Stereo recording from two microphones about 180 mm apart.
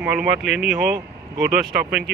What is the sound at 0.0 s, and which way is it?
Speech, 5° right (ahead or behind).